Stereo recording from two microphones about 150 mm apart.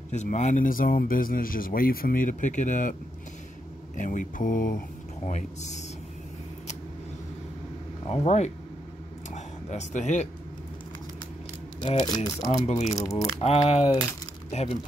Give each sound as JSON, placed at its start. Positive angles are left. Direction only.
{"t": 0.1, "sound": "speech", "side_deg": 50}
{"t": 8.1, "sound": "speech", "side_deg": 45}
{"t": 9.3, "sound": "a sound", "side_deg": 50}
{"t": 12.3, "sound": "speech", "side_deg": 25}
{"t": 12.6, "sound": "speech", "side_deg": 50}
{"t": 12.9, "sound": "speech", "side_deg": 25}
{"t": 13.4, "sound": "speech", "side_deg": 45}